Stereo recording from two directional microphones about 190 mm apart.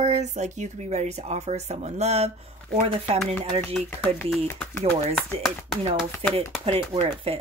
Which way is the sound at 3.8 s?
10° left (ahead or behind).